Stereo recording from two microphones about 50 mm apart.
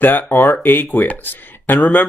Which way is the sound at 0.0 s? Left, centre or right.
Left.